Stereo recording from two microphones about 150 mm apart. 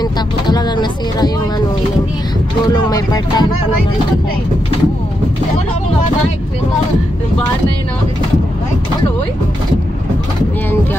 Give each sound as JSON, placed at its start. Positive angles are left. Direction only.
{"t": 0.0, "sound": "vehicle", "side_deg": 25}
{"t": 2.7, "sound": "speech", "side_deg": 25}